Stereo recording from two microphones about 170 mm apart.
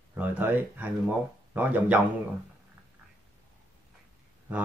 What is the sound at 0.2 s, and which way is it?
Speech, 10° right (ahead or behind).